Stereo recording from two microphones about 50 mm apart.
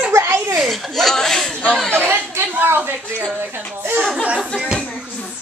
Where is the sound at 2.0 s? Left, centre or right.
Right.